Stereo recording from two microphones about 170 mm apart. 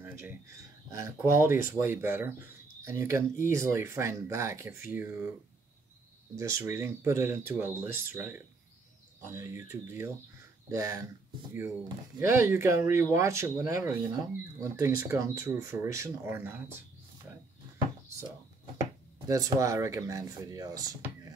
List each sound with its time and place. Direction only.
0.0 s speech: 15° right (ahead or behind)
6.6 s speech: 15° right (ahead or behind)
12.3 s speech: 15° right (ahead or behind)
19.2 s speech: 20° right (ahead or behind)